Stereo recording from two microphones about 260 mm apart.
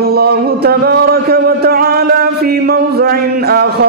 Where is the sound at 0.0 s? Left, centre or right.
Right.